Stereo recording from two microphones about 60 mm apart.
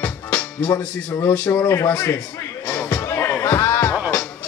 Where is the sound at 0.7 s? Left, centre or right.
Left.